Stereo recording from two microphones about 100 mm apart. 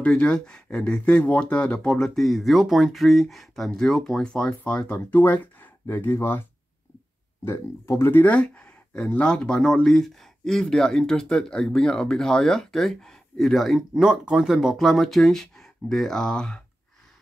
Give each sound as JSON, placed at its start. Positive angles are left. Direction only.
{"t": 0.0, "sound": "speech", "side_deg": 10}
{"t": 7.4, "sound": "speech", "side_deg": 25}